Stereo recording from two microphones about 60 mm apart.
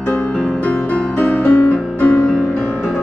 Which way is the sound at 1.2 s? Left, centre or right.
Left.